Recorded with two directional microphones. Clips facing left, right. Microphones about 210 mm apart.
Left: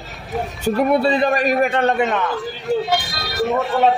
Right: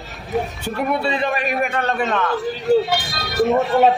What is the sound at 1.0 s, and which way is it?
Speech, 35° left (ahead or behind).